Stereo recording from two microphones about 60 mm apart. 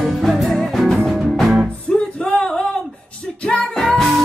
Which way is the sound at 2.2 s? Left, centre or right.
Centre.